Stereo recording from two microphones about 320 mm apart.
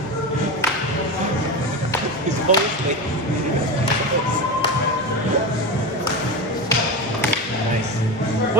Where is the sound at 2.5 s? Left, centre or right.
Right.